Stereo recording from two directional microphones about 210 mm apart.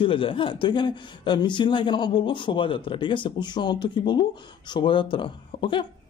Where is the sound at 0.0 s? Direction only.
25° left (ahead or behind).